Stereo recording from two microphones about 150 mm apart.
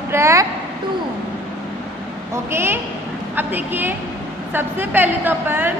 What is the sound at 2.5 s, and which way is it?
A woman's voice, 15° right (ahead or behind).